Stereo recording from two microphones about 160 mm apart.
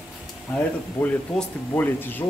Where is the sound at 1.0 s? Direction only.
10° left (ahead or behind).